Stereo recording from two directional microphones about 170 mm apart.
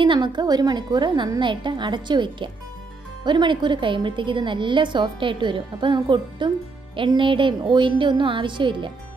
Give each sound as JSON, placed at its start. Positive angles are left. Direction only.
{"t": 0.0, "sound": "a woman's voice", "side_deg": -25}